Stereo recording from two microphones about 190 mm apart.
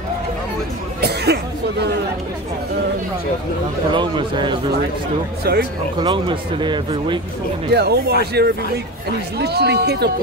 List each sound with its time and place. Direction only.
1.0 s a sound: 60° right (ahead or behind)
3.9 s speech: 25° right (ahead or behind)
5.4 s speech: 55° right (ahead or behind)
5.9 s speech: 25° right (ahead or behind)
7.7 s speech: 60° right (ahead or behind)